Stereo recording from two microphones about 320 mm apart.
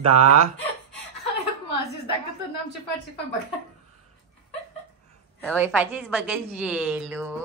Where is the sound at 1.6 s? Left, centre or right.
Right.